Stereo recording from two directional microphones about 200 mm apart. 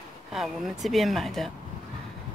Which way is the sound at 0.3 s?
Centre (ahead or behind).